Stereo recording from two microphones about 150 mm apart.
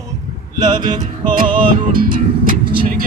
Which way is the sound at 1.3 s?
70° right (ahead or behind).